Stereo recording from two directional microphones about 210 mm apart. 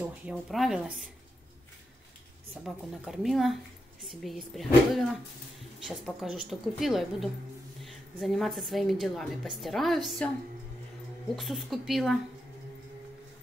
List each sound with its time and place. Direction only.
0.0 s speech: 5° right (ahead or behind)
2.5 s a woman's voice: centre (ahead or behind)
11.3 s speech: centre (ahead or behind)